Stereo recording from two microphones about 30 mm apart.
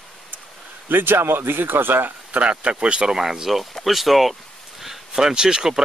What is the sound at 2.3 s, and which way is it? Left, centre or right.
Speech, right.